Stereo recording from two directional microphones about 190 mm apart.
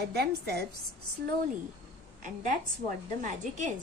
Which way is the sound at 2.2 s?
45° right (ahead or behind).